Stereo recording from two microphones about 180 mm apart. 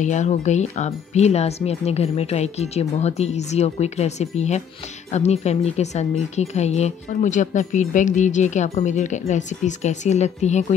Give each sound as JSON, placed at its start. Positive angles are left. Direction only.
{"t": 0.0, "sound": "speech", "side_deg": 40}